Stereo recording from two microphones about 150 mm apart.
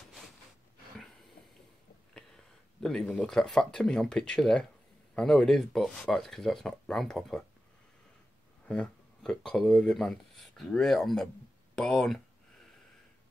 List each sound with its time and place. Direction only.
2.1 s speech: 5° left (ahead or behind)
8.6 s speech: 5° left (ahead or behind)
11.7 s a sound: centre (ahead or behind)